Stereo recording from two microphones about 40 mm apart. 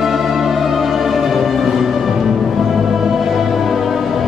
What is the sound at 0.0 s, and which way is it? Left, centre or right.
Music, centre.